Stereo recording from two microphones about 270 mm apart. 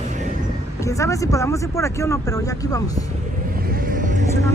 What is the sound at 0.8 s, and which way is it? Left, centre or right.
Speech, centre.